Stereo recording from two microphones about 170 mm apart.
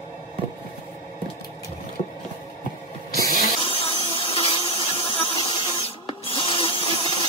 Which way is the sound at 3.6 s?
30° left (ahead or behind).